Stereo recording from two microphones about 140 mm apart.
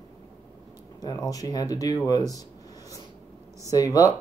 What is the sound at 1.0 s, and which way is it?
Speech, 25° left (ahead or behind).